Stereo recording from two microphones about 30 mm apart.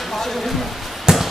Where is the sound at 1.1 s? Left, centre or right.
Right.